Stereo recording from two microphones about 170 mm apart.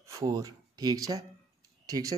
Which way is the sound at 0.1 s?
20° right (ahead or behind).